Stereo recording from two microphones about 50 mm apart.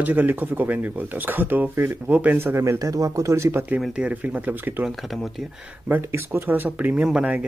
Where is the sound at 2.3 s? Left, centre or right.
Right.